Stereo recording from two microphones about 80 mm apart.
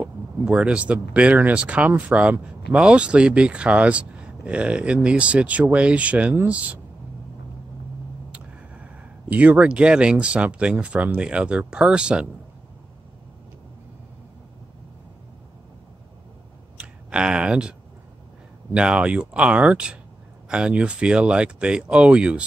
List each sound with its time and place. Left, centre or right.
0.0 s a sound: centre
1.1 s speech: centre
8.3 s speech: centre
16.7 s clicking: centre
18.7 s speech: centre